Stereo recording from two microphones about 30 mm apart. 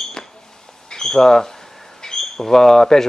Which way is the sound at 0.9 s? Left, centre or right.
Centre.